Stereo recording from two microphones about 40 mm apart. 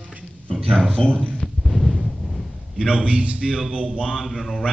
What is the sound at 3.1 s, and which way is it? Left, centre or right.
Speech, right.